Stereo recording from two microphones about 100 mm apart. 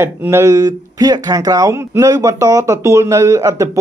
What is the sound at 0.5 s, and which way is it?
Speech, 40° right (ahead or behind).